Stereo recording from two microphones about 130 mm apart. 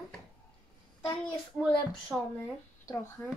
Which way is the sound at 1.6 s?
Centre (ahead or behind).